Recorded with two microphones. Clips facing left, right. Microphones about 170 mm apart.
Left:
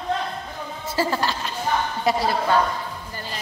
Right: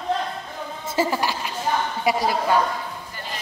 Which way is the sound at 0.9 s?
10° right (ahead or behind).